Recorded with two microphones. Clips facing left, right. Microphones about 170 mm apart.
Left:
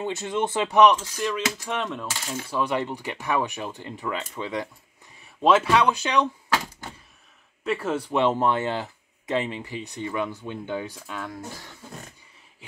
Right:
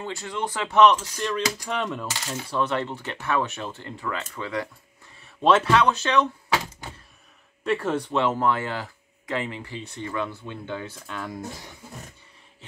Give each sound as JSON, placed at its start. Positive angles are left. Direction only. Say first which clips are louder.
{"t": 0.0, "sound": "speech", "louder": "left 4 dB", "side_deg": 20}
{"t": 1.1, "sound": "coin", "louder": "even", "side_deg": 5}
{"t": 2.6, "sound": "speech", "louder": "even", "side_deg": 15}
{"t": 5.2, "sound": "speech", "louder": "even", "side_deg": 5}
{"t": 7.6, "sound": "coin", "louder": "right 2 dB", "side_deg": 5}
{"t": 8.2, "sound": "speech", "louder": "left 3 dB", "side_deg": 20}
{"t": 11.1, "sound": "coin", "louder": "even", "side_deg": 0}